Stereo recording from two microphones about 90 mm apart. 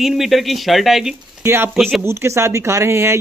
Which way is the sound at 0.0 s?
5° right (ahead or behind).